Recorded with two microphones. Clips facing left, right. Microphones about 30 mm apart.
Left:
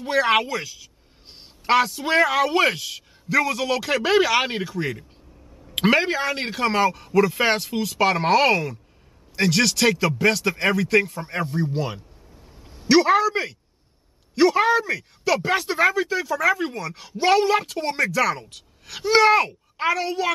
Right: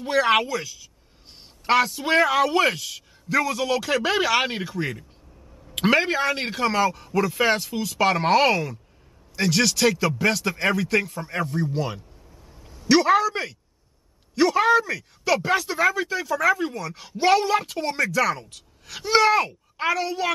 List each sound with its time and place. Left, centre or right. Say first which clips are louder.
0.0 s speech: even; centre
0.5 s speech: even; centre
1.7 s speech: left 1 dB; centre
15.5 s speech: left 2 dB; centre
15.9 s speech: left 2 dB; centre